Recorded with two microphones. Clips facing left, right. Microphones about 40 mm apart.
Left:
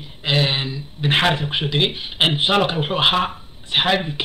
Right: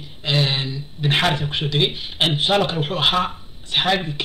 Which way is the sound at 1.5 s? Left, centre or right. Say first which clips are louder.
Left 1 dB; centre.